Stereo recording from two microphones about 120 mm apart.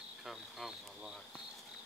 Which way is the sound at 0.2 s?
Centre (ahead or behind).